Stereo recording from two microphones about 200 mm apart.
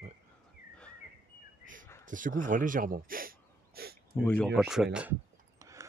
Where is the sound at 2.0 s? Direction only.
40° right (ahead or behind).